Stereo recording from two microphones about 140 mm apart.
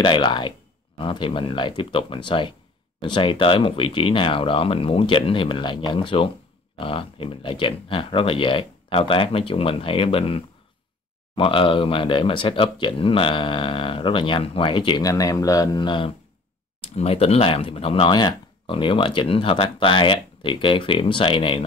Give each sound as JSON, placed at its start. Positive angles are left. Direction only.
{"t": 0.0, "sound": "speech", "side_deg": 35}
{"t": 16.8, "sound": "speech", "side_deg": 45}